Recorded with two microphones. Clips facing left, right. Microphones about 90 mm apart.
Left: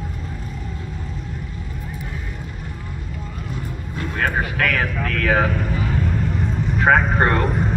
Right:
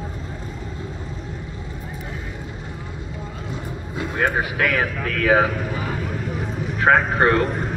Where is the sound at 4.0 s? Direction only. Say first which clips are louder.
Right 1 dB; 15° right (ahead or behind).